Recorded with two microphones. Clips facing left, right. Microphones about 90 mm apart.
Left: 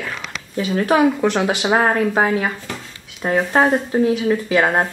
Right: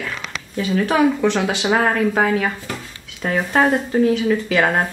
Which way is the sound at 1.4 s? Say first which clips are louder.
Left 1 dB; 20° left (ahead or behind).